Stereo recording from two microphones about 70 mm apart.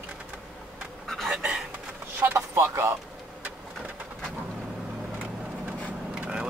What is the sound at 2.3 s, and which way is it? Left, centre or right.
Speech, right.